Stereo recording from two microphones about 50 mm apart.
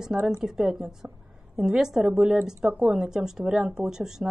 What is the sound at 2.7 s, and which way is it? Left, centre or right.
Speech, right.